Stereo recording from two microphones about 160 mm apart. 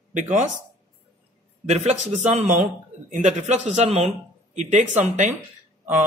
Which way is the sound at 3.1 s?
50° right (ahead or behind).